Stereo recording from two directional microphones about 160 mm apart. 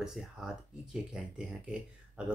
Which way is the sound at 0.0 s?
5° right (ahead or behind).